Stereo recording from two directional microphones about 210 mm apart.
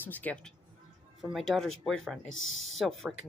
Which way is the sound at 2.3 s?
70° left (ahead or behind).